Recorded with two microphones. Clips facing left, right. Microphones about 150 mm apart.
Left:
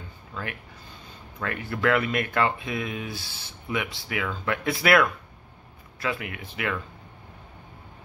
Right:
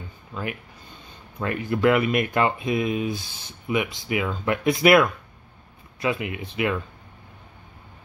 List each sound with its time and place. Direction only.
0.3 s speech: 15° right (ahead or behind)